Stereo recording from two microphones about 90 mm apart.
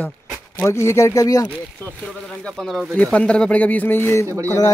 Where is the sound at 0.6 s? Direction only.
30° left (ahead or behind).